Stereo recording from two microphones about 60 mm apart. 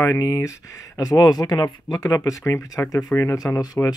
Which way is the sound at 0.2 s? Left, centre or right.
Left.